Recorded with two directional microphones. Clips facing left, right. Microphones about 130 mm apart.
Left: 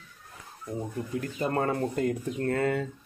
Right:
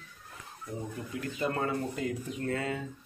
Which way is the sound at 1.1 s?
40° left (ahead or behind).